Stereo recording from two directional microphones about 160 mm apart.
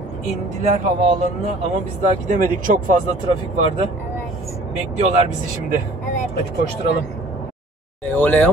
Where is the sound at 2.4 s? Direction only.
60° right (ahead or behind).